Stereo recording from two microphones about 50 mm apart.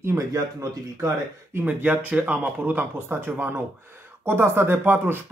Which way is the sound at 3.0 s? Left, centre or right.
Right.